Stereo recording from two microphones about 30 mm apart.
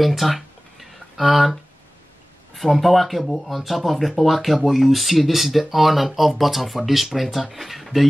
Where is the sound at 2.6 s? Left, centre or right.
Centre.